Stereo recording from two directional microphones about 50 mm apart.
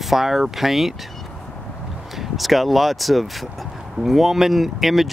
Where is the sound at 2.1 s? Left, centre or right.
Centre.